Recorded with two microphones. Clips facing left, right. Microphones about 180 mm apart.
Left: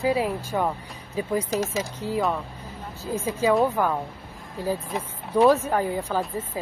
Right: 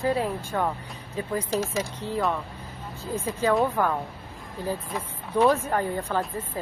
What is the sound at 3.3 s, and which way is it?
Speech, 10° left (ahead or behind).